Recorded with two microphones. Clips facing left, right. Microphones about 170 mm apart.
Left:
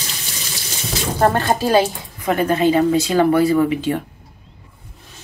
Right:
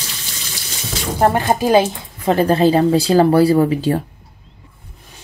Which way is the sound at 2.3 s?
35° right (ahead or behind).